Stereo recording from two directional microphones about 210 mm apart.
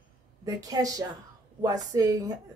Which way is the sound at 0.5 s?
15° right (ahead or behind).